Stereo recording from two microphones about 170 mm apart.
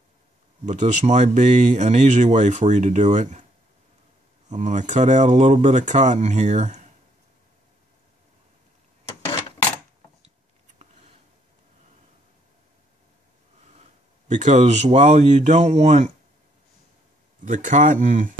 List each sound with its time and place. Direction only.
0.7 s speech: 45° right (ahead or behind)
4.5 s speech: 45° right (ahead or behind)
14.2 s speech: 45° right (ahead or behind)
17.5 s speech: 50° right (ahead or behind)